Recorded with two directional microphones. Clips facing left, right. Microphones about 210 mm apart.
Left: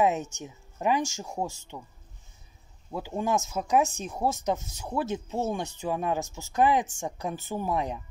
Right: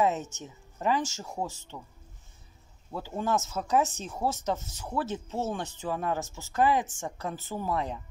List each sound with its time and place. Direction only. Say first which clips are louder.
0.0 s speech: left 2 dB; 15° left (ahead or behind)
2.9 s speech: left 2 dB; 15° left (ahead or behind)